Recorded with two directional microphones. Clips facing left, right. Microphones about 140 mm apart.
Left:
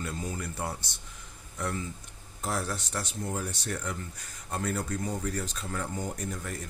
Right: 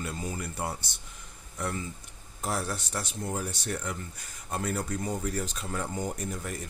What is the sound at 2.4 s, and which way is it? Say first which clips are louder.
Speech: even; 5° right (ahead or behind).